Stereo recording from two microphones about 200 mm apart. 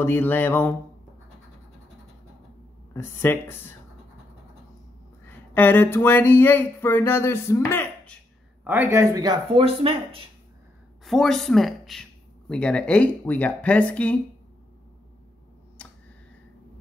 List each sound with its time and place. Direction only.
0.0 s speech: 10° left (ahead or behind)
2.9 s speech: 10° left (ahead or behind)
5.2 s speech: 10° left (ahead or behind)
8.6 s speech: 10° right (ahead or behind); by 10.2 s 30° right (ahead or behind)
11.1 s speech: centre (ahead or behind)
15.8 s a sound: 5° left (ahead or behind)